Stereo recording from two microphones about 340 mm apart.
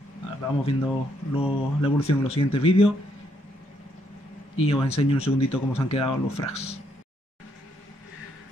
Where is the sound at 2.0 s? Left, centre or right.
Centre.